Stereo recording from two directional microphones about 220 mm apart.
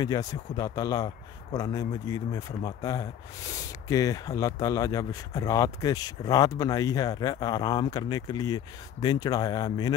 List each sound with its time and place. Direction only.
0.0 s speech: 15° left (ahead or behind)